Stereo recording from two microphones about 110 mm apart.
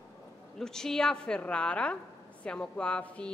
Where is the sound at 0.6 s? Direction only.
5° left (ahead or behind).